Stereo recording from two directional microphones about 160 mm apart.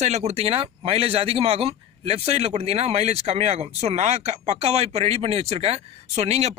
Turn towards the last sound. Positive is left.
turn(degrees=-45)  # may be behind; listen again after turning